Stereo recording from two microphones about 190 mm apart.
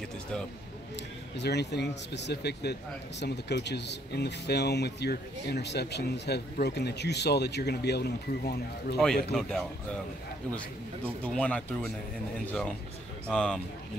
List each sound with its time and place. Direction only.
1.3 s speech: 65° left (ahead or behind)
8.9 s speech: centre (ahead or behind)
11.2 s speech: 5° left (ahead or behind)
13.3 s speech: 5° left (ahead or behind)